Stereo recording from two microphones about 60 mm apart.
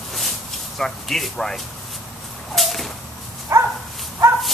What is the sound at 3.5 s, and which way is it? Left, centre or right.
Dog, right.